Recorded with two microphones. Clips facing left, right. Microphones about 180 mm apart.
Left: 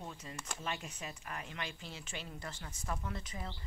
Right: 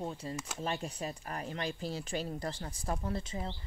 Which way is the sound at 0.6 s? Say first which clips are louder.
Right 6 dB; 35° right (ahead or behind).